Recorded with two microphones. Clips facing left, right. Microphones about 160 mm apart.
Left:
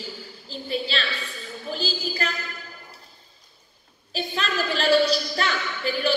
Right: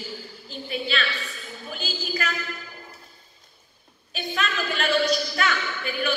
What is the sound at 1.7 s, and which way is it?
Speech, 35° left (ahead or behind).